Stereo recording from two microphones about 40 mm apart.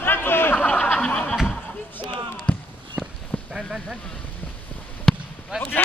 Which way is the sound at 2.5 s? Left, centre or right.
Left.